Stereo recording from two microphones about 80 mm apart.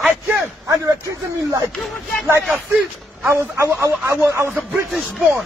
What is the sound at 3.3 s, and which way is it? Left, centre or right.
Speech, right.